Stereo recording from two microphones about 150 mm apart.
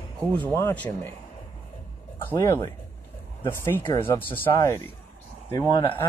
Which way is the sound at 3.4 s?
15° left (ahead or behind).